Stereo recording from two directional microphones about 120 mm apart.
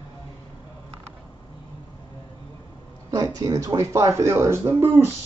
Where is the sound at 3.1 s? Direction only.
30° right (ahead or behind).